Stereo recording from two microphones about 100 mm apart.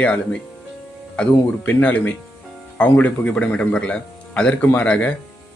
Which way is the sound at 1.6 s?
15° left (ahead or behind).